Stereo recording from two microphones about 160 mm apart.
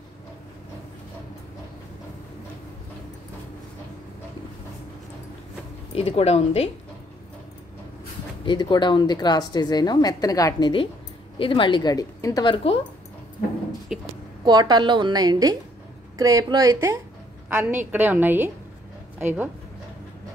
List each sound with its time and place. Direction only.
5.9 s speech: 40° left (ahead or behind)
8.5 s a woman's voice: 30° left (ahead or behind)
13.9 s a woman's voice: centre (ahead or behind)
14.4 s a woman's voice: 25° right (ahead or behind)
17.5 s a woman's voice: 10° right (ahead or behind)